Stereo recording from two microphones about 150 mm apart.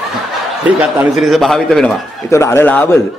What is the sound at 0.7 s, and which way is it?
A man's voice, 10° right (ahead or behind).